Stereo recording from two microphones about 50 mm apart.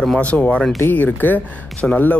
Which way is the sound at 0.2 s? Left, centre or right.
Left.